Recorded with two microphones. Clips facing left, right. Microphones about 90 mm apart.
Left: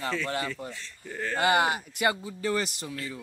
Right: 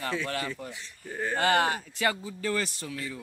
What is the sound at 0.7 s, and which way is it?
Speech, 15° right (ahead or behind).